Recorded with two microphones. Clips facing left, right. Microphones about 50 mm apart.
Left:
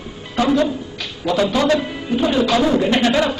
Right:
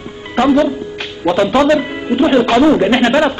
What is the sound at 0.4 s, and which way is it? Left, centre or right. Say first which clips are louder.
A man's voice: right 5 dB; right.